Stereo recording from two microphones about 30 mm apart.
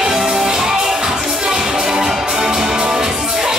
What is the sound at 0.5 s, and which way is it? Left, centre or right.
Music, right.